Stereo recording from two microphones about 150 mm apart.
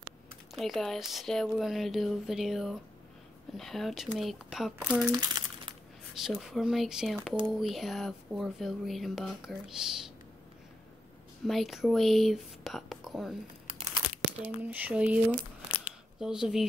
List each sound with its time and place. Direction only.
0.6 s speech: centre (ahead or behind)
4.7 s a sound: 10° right (ahead or behind)
5.1 s crumpling: 30° right (ahead or behind)
6.1 s speech: 5° right (ahead or behind)
11.4 s speech: centre (ahead or behind)
14.6 s a sound: 10° right (ahead or behind)
16.2 s speech: 5° right (ahead or behind)